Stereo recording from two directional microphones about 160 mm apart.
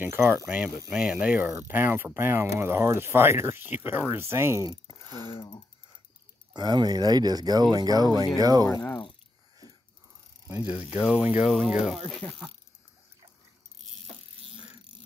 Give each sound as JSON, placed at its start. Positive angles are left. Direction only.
{"t": 0.3, "sound": "speech", "side_deg": -10}
{"t": 6.5, "sound": "speech", "side_deg": -25}
{"t": 8.6, "sound": "speech", "side_deg": 15}
{"t": 10.4, "sound": "speech", "side_deg": -15}